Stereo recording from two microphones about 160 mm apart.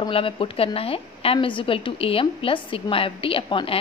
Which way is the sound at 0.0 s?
35° left (ahead or behind).